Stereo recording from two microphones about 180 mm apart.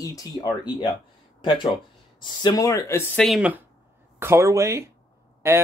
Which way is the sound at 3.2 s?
Centre (ahead or behind).